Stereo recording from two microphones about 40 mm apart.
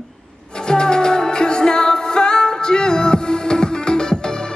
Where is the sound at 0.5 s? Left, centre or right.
Centre.